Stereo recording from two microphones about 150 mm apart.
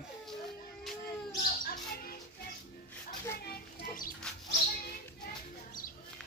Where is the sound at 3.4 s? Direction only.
90° left.